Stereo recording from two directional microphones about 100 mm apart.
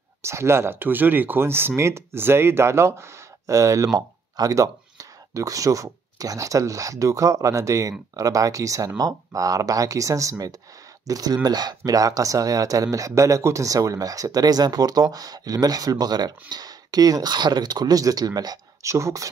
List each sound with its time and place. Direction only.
0.2 s speech: 25° right (ahead or behind)